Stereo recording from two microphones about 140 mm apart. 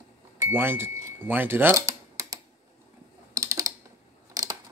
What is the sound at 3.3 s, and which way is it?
Typing, 25° right (ahead or behind).